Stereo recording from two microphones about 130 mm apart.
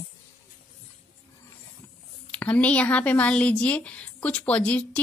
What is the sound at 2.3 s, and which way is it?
A woman's voice, 10° left (ahead or behind).